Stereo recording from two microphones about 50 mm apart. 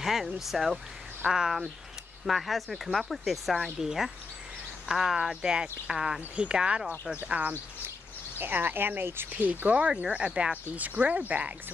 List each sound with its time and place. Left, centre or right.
0.0 s speech: centre
7.2 s speech: right
8.4 s speech: right
9.4 s speech: right